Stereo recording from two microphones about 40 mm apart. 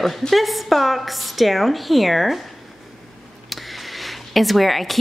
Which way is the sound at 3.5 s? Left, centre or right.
Centre.